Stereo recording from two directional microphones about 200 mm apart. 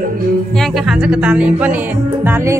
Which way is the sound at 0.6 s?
Centre (ahead or behind).